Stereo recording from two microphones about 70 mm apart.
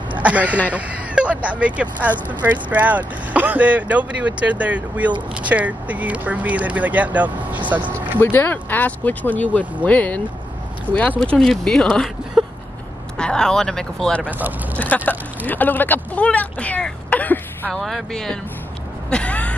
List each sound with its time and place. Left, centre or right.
0.1 s speech: right
8.2 s speech: left
11.1 s speech: centre
12.4 s vehicle: centre
13.2 s speech: centre
15.0 s speech: left
17.6 s speech: centre
19.0 s a sound: centre